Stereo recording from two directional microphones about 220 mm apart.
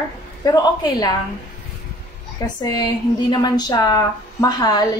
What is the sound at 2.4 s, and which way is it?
A woman's voice, 15° left (ahead or behind).